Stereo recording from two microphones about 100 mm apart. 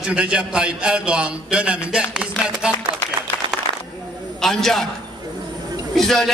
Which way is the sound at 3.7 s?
55° right (ahead or behind).